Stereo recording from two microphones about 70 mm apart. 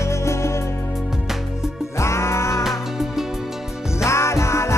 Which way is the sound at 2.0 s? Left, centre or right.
Left.